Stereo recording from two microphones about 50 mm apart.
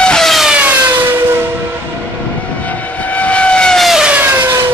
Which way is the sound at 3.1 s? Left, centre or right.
Left.